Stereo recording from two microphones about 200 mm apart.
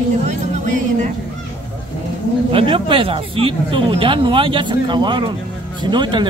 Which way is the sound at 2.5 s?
25° right (ahead or behind).